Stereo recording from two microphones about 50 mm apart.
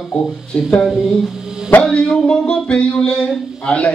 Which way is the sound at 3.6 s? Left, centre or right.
Left.